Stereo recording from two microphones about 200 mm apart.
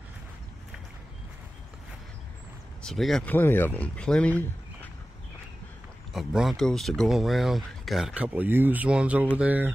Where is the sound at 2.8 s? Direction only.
Centre (ahead or behind).